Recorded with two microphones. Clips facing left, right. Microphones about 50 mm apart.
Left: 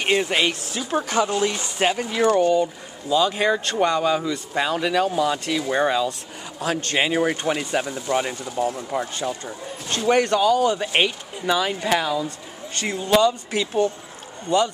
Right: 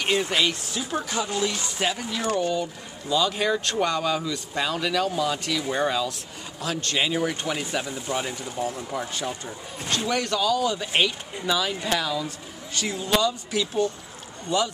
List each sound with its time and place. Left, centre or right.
0.0 s speech: left
1.0 s speech: left
3.3 s speech: left
6.6 s speech: left
9.2 s speech: centre
9.9 s speech: left